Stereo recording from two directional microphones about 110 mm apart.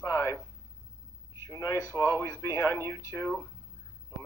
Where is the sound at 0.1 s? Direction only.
25° left (ahead or behind).